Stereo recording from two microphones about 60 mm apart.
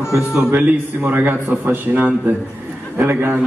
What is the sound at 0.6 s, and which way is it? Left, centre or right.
A man's voice, right.